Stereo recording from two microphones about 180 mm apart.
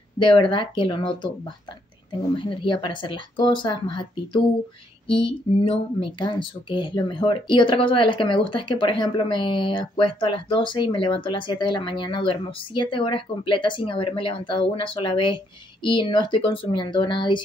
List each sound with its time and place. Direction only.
0.2 s speech: 25° left (ahead or behind)
2.3 s speech: 30° left (ahead or behind)
5.7 s speech: 25° left (ahead or behind)